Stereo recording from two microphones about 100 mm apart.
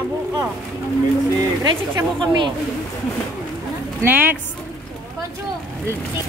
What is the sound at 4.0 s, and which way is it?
Speech, 20° right (ahead or behind).